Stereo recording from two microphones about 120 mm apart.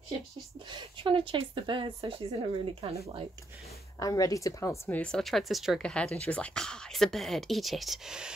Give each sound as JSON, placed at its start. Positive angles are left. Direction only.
{"t": 0.7, "sound": "speech", "side_deg": -45}
{"t": 4.0, "sound": "speech", "side_deg": 30}
{"t": 4.9, "sound": "speech", "side_deg": 5}